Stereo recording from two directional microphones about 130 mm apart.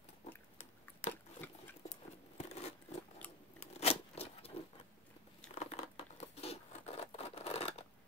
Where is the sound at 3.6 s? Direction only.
50° left (ahead or behind).